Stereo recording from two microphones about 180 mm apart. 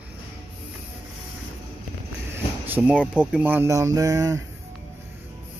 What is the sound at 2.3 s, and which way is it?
Speech, 10° right (ahead or behind).